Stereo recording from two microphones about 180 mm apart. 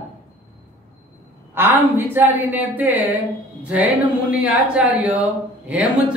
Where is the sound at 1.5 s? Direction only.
10° right (ahead or behind).